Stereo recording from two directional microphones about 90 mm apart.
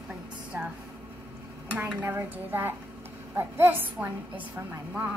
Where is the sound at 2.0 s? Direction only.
25° right (ahead or behind).